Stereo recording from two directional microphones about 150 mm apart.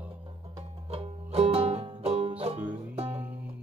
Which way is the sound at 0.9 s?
40° right (ahead or behind).